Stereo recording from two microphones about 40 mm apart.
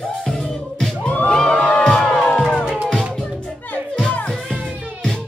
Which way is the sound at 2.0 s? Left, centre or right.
Centre.